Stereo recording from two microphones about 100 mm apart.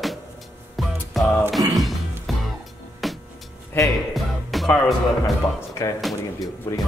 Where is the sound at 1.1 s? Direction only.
Centre (ahead or behind).